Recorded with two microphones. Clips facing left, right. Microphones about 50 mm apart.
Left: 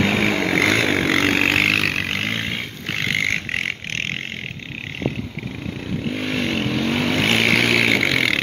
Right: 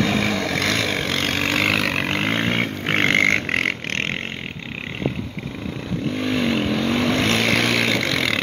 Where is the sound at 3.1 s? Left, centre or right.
Right.